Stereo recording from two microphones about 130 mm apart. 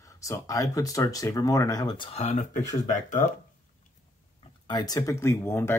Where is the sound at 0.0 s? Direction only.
25° left (ahead or behind).